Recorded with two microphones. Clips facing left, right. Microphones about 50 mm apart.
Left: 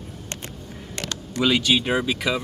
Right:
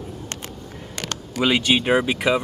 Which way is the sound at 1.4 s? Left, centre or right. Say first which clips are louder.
Right 1 dB; right.